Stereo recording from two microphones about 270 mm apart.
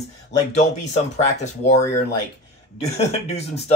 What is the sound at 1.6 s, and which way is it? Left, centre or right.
Speech, left.